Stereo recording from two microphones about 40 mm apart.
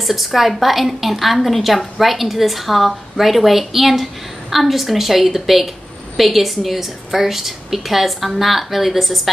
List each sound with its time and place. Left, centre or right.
0.0 s a woman's voice: centre